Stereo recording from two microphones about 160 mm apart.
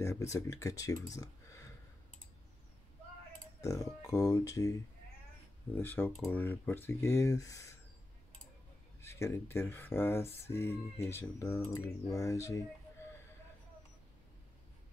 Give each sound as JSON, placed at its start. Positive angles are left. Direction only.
{"t": 0.0, "sound": "speech", "side_deg": 20}
{"t": 3.6, "sound": "speech", "side_deg": 20}
{"t": 5.8, "sound": "speech", "side_deg": 15}
{"t": 9.0, "sound": "speech", "side_deg": 15}